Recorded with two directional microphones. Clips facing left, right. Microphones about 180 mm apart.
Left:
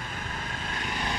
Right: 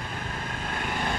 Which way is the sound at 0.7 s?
50° right (ahead or behind).